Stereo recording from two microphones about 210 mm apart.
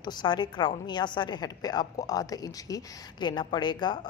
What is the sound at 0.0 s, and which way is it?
A woman's voice, 20° left (ahead or behind).